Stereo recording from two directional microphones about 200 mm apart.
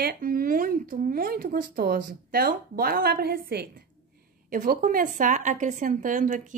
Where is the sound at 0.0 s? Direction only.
45° right (ahead or behind).